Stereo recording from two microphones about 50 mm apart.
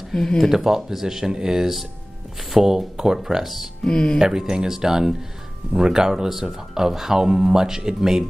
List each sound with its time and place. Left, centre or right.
0.1 s speech: centre
0.4 s speech: centre
3.8 s speech: centre
4.2 s speech: centre